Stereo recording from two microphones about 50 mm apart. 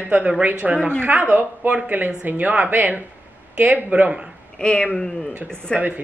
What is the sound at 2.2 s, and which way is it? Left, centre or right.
A woman's voice, right.